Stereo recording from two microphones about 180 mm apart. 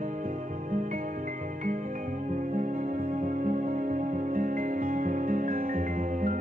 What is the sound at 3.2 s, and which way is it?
Music, 50° right (ahead or behind).